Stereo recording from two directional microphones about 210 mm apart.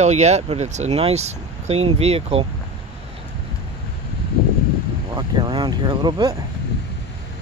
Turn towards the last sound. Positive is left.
turn(degrees=-20)  # may be behind; listen again after turning